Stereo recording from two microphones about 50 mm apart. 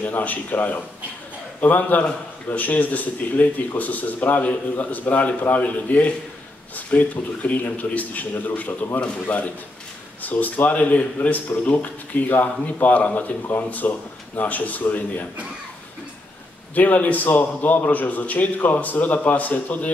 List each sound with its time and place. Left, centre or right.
0.0 s a man's voice: left
16.7 s a man's voice: left